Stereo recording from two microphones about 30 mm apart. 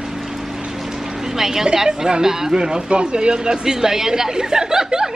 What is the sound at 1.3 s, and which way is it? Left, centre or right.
A woman's voice, centre.